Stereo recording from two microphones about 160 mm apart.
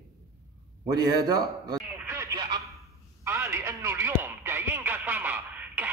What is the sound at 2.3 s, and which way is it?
Telephone, 30° right (ahead or behind).